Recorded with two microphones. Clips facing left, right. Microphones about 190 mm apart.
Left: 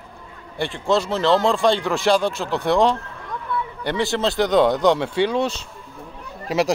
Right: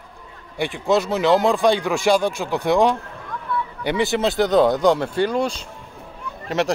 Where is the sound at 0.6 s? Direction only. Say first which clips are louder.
Right 1 dB; 15° right (ahead or behind).